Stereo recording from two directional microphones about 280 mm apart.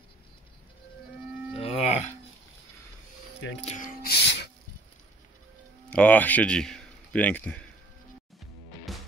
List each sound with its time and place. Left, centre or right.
1.6 s music: left
3.6 s a sound: left
5.9 s a man's voice: centre
8.9 s music: centre